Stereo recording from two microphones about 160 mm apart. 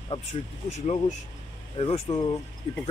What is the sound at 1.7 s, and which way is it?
Speech, 35° left (ahead or behind).